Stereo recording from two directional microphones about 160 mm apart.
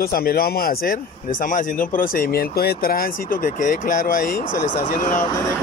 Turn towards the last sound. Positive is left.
turn(degrees=50)  # may be behind; listen again after turning